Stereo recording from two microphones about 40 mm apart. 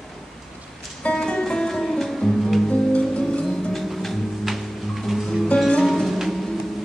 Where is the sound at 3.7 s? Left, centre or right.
Centre.